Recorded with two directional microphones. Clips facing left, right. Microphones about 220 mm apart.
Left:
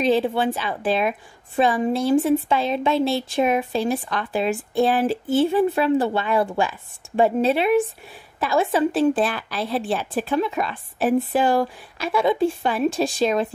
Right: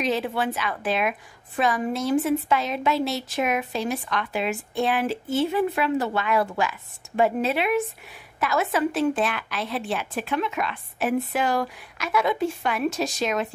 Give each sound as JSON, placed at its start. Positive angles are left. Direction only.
{"t": 0.0, "sound": "a woman's voice", "side_deg": 30}